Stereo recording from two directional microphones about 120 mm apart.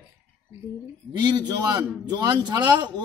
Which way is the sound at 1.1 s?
35° right (ahead or behind).